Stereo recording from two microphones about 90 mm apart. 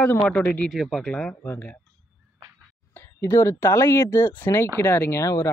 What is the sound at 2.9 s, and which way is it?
Speech, 30° left (ahead or behind).